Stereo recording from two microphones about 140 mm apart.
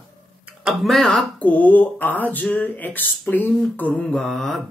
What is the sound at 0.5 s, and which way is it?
Speech, 5° right (ahead or behind).